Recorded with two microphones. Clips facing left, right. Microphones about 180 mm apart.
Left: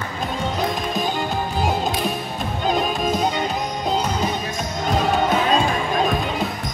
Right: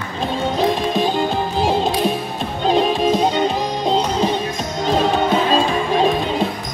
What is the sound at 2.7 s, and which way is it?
Music, 25° right (ahead or behind).